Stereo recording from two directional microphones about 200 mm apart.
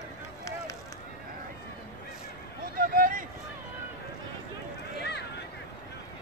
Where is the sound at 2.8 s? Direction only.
45° right (ahead or behind).